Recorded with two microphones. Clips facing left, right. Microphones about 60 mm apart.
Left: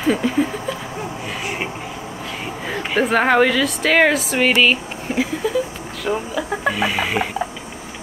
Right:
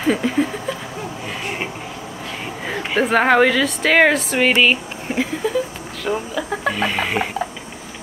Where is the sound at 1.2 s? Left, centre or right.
Centre.